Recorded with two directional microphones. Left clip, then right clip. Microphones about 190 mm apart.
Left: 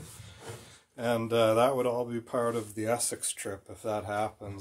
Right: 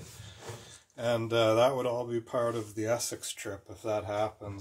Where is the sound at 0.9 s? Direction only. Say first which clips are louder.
Left 1 dB; 30° left (ahead or behind).